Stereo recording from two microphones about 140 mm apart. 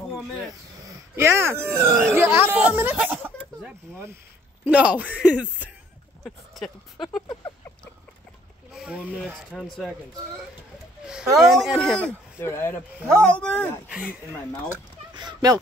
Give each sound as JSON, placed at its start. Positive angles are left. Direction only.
{"t": 0.8, "sound": "speech", "side_deg": -15}
{"t": 8.7, "sound": "speech", "side_deg": -5}
{"t": 9.5, "sound": "speech", "side_deg": 5}
{"t": 11.3, "sound": "speech", "side_deg": 0}
{"t": 12.4, "sound": "speech", "side_deg": 15}
{"t": 13.8, "sound": "speech", "side_deg": -5}
{"t": 15.1, "sound": "speech", "side_deg": -30}